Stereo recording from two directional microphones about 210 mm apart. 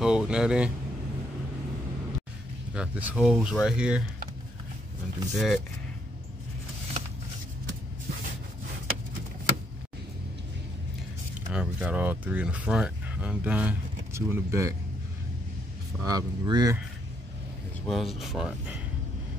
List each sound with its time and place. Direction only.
0.0 s speech: 5° right (ahead or behind)
2.7 s speech: 5° right (ahead or behind)
5.3 s speech: centre (ahead or behind)
11.5 s speech: 5° right (ahead or behind)
16.0 s speech: 15° right (ahead or behind)
17.8 s speech: centre (ahead or behind)